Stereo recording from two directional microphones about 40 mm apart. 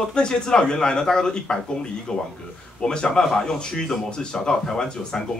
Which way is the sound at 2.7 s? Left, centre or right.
Left.